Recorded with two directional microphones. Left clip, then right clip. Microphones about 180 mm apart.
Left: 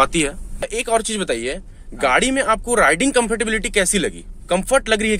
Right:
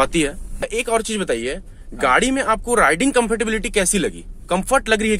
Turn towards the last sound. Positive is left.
turn(degrees=-5)  # may be behind; listen again after turning